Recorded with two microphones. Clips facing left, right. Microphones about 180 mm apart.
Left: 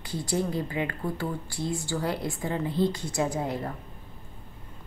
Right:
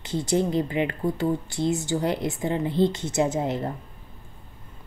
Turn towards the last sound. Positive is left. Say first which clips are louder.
# right 4 dB
turn(degrees=-25)  # may be behind; listen again after turning